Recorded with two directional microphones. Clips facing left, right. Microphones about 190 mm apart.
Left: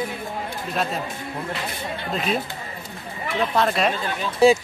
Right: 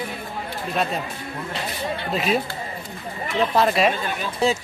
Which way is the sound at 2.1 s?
Centre (ahead or behind).